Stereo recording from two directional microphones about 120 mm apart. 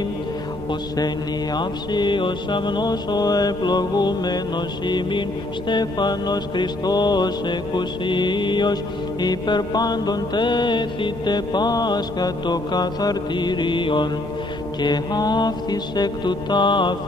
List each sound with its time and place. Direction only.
0.7 s music: 35° left (ahead or behind)